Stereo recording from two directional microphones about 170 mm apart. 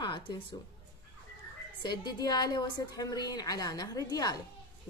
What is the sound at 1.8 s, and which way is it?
A woman's voice, 25° left (ahead or behind).